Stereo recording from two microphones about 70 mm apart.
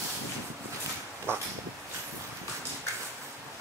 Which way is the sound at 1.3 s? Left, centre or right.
Right.